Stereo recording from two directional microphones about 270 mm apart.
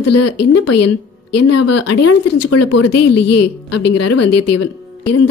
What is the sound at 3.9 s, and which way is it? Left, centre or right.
Speech, left.